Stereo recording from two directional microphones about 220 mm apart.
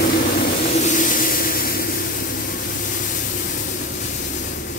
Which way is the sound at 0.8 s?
35° left (ahead or behind).